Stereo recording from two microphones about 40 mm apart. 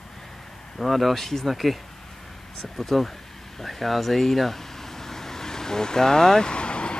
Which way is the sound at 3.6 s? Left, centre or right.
Centre.